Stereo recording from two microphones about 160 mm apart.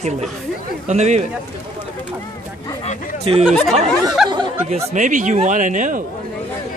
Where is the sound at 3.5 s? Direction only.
5° left (ahead or behind).